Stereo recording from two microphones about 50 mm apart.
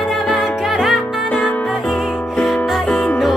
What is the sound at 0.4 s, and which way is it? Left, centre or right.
Music, centre.